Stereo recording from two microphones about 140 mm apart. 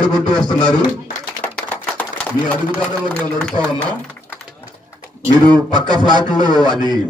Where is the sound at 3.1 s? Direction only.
5° left (ahead or behind).